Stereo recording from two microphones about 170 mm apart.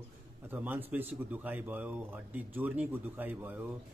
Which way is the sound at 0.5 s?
10° right (ahead or behind).